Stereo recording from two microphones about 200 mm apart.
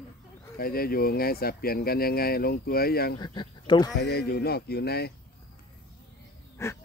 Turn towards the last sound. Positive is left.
turn(degrees=15)  # may be behind; listen again after turning